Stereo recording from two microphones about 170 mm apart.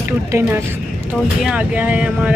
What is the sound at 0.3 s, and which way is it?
Speech, 15° right (ahead or behind).